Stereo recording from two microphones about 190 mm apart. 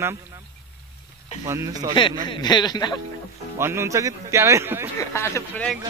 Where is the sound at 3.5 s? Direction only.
15° right (ahead or behind).